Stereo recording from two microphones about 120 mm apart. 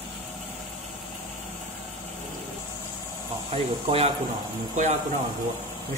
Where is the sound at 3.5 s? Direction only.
55° right (ahead or behind).